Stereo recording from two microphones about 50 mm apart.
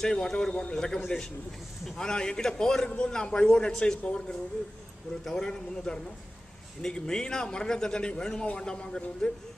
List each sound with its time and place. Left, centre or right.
0.0 s a man's voice: centre